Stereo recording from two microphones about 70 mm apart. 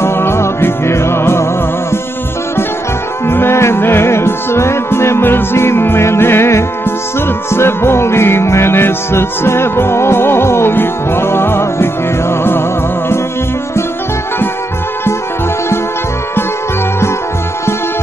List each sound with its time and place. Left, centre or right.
0.0 s music: left
3.3 s music: left